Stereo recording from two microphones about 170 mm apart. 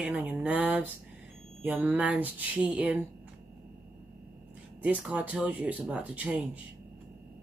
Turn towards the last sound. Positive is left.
turn(degrees=-5)  # may be behind; listen again after turning